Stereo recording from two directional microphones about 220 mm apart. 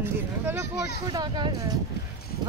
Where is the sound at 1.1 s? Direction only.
20° right (ahead or behind).